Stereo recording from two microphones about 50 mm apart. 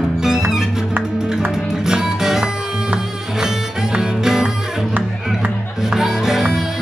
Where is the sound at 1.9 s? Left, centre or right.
Centre.